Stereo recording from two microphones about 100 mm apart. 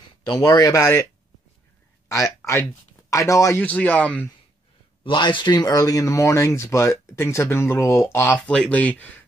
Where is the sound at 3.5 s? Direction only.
15° left (ahead or behind).